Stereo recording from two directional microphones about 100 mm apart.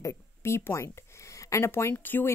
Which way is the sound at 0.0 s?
30° left (ahead or behind).